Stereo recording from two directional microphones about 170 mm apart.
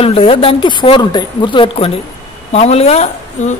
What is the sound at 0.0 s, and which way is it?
A woman's voice, 35° left (ahead or behind).